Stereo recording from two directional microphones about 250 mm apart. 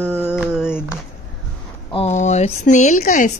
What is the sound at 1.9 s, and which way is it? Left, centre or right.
Speech, left.